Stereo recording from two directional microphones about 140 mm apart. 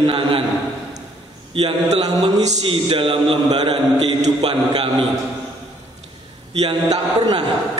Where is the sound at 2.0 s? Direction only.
30° right (ahead or behind).